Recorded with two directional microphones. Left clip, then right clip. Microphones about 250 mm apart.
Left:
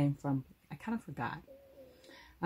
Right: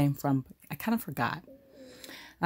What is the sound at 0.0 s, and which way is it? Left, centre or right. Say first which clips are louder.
Speech: right 6 dB; right.